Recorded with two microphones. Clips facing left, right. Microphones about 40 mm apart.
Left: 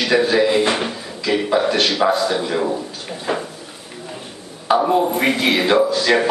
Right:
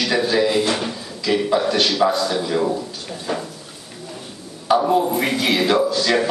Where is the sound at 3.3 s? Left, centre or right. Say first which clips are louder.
Left 3 dB; left.